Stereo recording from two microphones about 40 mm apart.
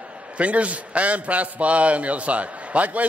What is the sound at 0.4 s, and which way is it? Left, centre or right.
A man's voice, right.